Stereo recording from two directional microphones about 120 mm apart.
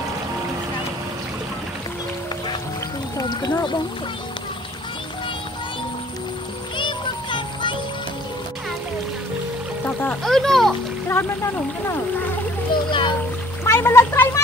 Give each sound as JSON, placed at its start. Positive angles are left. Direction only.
{"t": 3.2, "sound": "a sound", "side_deg": 35}
{"t": 6.8, "sound": "music", "side_deg": 40}
{"t": 9.8, "sound": "music", "side_deg": 15}
{"t": 10.2, "sound": "a child's voice", "side_deg": 0}
{"t": 11.1, "sound": "speech", "side_deg": 20}
{"t": 12.7, "sound": "music", "side_deg": 40}
{"t": 13.7, "sound": "speech", "side_deg": 20}